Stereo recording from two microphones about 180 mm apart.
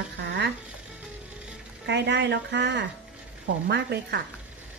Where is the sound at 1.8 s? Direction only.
75° right (ahead or behind).